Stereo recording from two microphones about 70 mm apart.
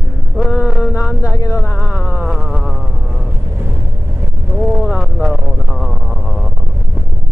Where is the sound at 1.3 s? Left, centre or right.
Left.